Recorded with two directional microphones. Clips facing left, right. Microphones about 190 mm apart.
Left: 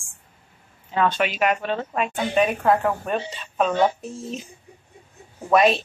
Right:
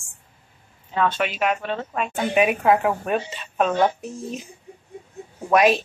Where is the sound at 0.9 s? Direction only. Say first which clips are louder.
Left 1 dB; centre (ahead or behind).